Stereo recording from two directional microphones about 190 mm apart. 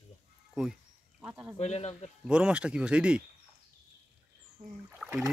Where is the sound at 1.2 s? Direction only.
5° right (ahead or behind).